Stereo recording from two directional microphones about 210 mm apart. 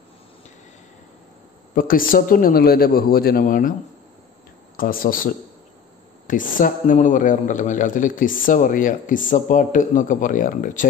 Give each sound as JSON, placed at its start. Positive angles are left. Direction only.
{"t": 1.8, "sound": "a man's voice", "side_deg": 40}
{"t": 4.7, "sound": "a man's voice", "side_deg": 40}